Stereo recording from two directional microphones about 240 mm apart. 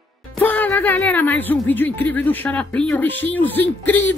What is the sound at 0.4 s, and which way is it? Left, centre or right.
Speech, centre.